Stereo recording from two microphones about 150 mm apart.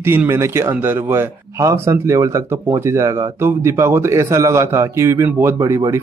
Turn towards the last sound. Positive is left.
turn(degrees=-20)  # may be behind; listen again after turning